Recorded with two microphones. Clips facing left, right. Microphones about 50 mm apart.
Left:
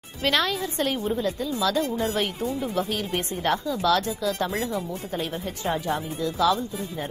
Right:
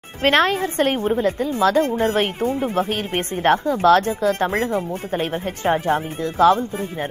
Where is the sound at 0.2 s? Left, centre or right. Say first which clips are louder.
Right 7 dB; right.